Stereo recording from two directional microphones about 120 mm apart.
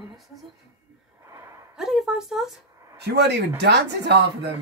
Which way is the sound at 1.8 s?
5° right (ahead or behind).